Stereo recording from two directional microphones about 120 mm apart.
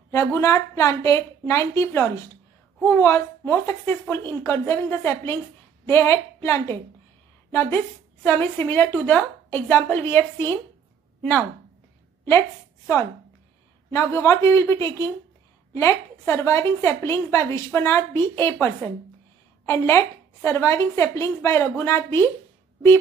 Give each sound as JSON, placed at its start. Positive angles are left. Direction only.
{"t": 0.1, "sound": "a woman's voice", "side_deg": 25}
{"t": 12.3, "sound": "a woman's voice", "side_deg": 25}